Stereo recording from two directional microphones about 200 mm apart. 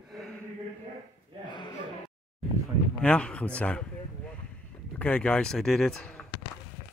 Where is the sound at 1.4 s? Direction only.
20° left (ahead or behind).